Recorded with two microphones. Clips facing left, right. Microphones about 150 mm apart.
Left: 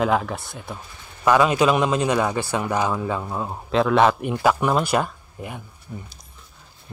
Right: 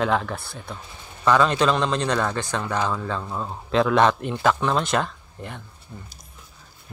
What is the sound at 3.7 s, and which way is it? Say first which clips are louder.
Speech: left 1 dB; centre (ahead or behind).